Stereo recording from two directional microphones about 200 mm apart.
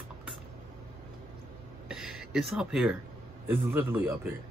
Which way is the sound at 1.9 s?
5° right (ahead or behind).